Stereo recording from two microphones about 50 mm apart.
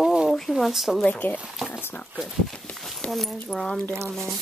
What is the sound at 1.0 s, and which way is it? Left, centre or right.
Speech, left.